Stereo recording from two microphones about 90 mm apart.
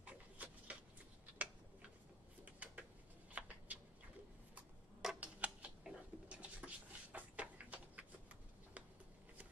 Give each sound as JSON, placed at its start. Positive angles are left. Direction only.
{"t": 0.0, "sound": "dog", "side_deg": -15}
{"t": 2.6, "sound": "bird", "side_deg": -15}
{"t": 3.3, "sound": "a sound", "side_deg": -15}
{"t": 5.2, "sound": "scissors", "side_deg": -15}